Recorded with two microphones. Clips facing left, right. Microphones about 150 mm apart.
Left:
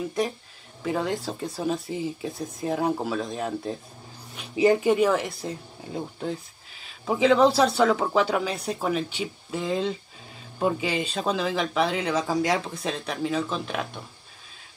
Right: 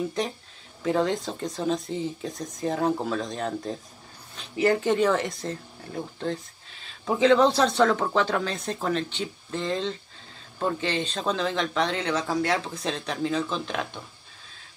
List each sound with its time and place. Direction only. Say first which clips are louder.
0.8 s speech: right 2 dB; 5° left (ahead or behind)
4.4 s speech: left 3 dB; 15° left (ahead or behind)